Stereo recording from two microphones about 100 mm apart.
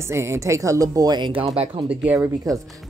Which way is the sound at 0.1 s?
25° right (ahead or behind).